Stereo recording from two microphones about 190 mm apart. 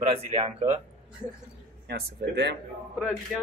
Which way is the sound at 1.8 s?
60° right (ahead or behind).